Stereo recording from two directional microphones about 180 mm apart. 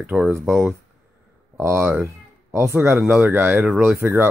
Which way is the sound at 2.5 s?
10° right (ahead or behind).